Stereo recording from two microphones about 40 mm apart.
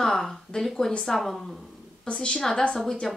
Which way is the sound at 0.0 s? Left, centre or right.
Centre.